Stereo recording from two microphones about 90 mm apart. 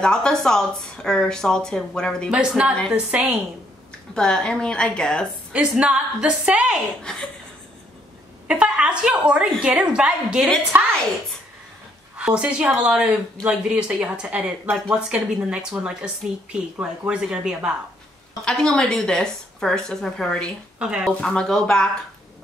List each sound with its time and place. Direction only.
0.0 s speech: 5° left (ahead or behind)
2.3 s speech: 10° right (ahead or behind)
4.1 s speech: 10° left (ahead or behind)
5.5 s speech: 10° right (ahead or behind)
7.0 s speech: 5° left (ahead or behind)
8.5 s speech: 10° right (ahead or behind)
10.7 s a woman's voice: 20° right (ahead or behind)
12.2 s speech: 10° right (ahead or behind)
17.1 s speech: 10° right (ahead or behind)
18.4 s speech: 10° left (ahead or behind)
20.8 s speech: 10° right (ahead or behind)
21.2 s speech: 10° left (ahead or behind)